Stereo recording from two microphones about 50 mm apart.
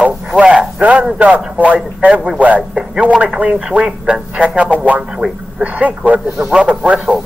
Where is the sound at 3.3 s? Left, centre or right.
Centre.